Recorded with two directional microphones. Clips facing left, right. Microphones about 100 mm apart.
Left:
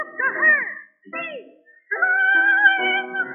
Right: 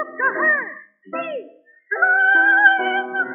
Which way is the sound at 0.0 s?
30° right (ahead or behind).